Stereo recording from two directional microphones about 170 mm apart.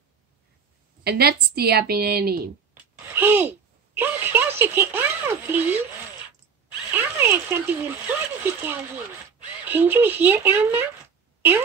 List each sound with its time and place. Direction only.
1.0 s a woman's voice: 65° right (ahead or behind)
2.7 s a sound: 10° right (ahead or behind)
6.9 s speech: 10° right (ahead or behind)